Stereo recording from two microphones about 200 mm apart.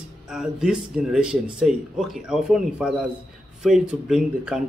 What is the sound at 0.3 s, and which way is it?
Speech, 5° right (ahead or behind).